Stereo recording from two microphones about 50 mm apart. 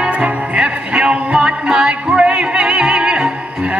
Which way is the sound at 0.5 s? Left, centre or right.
Right.